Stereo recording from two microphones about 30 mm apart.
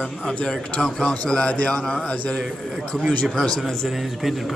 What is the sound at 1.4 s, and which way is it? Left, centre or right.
Speech, left.